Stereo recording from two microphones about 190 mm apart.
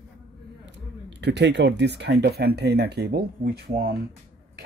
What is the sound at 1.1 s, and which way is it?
Speech, 65° right (ahead or behind).